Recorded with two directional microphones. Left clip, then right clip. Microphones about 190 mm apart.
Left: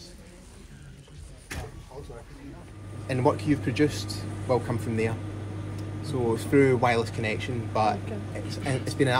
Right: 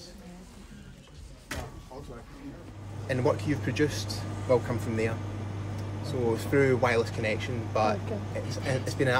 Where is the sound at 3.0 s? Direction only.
20° left (ahead or behind).